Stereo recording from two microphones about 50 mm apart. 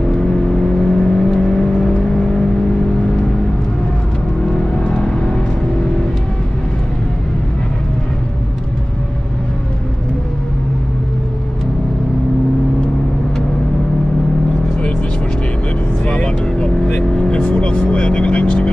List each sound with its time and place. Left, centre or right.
0.8 s vehicle: centre
4.5 s vehicle: centre
16.1 s vehicle: centre